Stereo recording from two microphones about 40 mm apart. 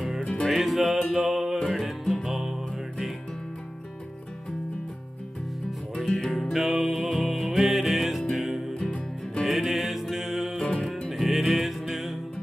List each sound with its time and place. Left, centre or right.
0.2 s music: left
0.5 s music: centre
6.5 s music: centre
8.7 s music: left
9.4 s music: centre
10.6 s music: centre
11.1 s music: centre